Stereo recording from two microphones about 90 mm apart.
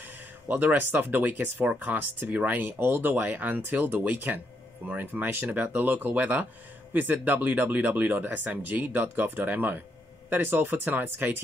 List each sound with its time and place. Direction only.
0.5 s speech: 20° right (ahead or behind)